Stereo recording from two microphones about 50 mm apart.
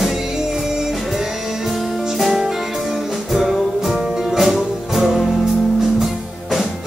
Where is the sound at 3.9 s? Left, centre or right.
Centre.